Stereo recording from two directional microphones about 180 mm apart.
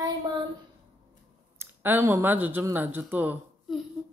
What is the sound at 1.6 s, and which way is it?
Speech, 10° right (ahead or behind).